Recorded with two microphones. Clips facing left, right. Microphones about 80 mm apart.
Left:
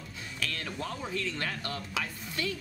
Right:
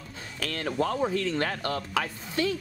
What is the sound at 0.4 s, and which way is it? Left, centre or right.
Speech, right.